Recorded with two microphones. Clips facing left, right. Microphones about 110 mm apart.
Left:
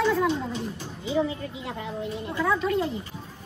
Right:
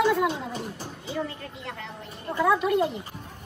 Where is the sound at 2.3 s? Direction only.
5° right (ahead or behind).